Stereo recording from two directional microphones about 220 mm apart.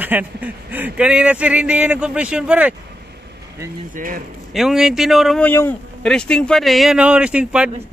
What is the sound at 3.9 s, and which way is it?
Speech, 40° right (ahead or behind).